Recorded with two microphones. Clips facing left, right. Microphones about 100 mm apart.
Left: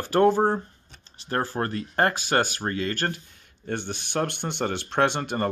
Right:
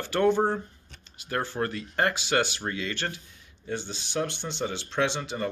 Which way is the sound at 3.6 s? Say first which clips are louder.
Left 3 dB; 60° left (ahead or behind).